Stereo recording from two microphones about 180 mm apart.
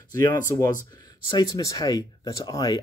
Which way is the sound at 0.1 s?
20° left (ahead or behind).